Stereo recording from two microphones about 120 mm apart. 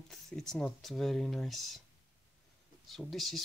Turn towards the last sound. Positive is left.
turn(degrees=0)  # may be behind; listen again after turning